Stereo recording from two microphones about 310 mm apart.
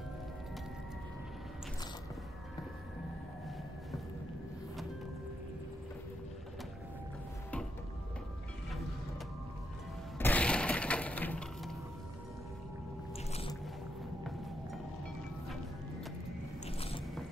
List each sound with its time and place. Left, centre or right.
10.1 s breaking: centre
13.3 s a sound: centre
16.6 s biting: centre